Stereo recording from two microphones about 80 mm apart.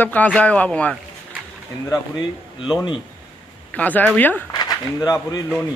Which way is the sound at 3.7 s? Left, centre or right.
Centre.